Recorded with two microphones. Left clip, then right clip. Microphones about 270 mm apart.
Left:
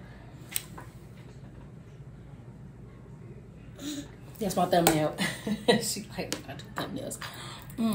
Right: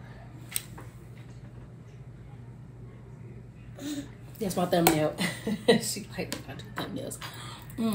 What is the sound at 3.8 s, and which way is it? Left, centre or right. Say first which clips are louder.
Speech: right 1 dB; centre.